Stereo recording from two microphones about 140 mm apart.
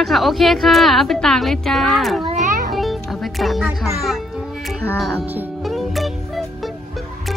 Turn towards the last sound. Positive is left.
turn(degrees=0)  # may be behind; listen again after turning